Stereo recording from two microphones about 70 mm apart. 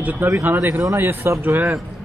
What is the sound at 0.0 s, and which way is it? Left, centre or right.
Speech, right.